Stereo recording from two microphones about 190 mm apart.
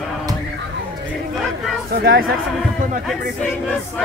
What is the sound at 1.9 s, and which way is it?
Speech, 50° right (ahead or behind).